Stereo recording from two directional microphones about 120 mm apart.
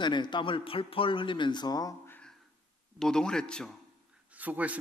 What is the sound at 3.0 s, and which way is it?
Speech, 5° left (ahead or behind).